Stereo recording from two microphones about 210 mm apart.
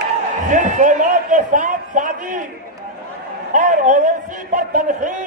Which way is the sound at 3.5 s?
35° right (ahead or behind).